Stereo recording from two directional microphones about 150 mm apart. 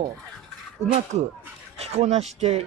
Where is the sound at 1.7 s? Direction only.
45° right (ahead or behind).